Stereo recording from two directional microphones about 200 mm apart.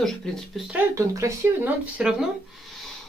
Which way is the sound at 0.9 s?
15° right (ahead or behind).